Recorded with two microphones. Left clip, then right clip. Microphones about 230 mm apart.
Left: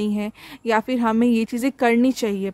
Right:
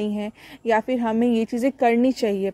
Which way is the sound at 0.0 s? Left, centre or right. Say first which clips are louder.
Left 1 dB; centre.